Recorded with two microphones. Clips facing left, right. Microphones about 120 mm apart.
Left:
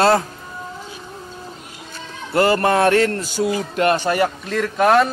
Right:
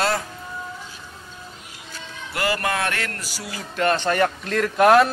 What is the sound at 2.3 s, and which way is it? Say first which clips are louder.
A man's voice: left 8 dB; 30° left (ahead or behind).